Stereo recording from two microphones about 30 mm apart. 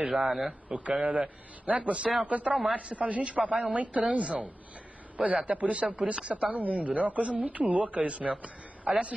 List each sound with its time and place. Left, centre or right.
0.0 s speech: centre
0.5 s speech: right
6.3 s speech: right